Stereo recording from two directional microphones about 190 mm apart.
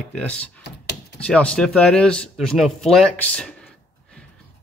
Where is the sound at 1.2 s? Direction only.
5° left (ahead or behind).